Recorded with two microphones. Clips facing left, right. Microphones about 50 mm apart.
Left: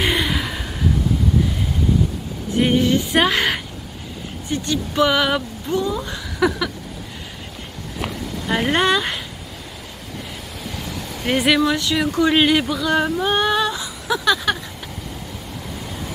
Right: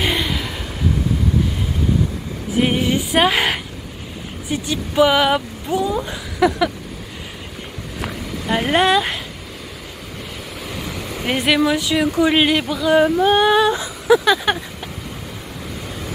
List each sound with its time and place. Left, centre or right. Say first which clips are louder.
0.0 s chuckle: left 1 dB; centre
2.7 s speech: left 2 dB; centre
3.0 s speech: right 1 dB; centre
8.5 s speech: right 2 dB; centre
11.2 s speech: even; centre